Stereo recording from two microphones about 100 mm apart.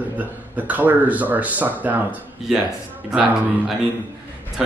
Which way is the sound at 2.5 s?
5° right (ahead or behind).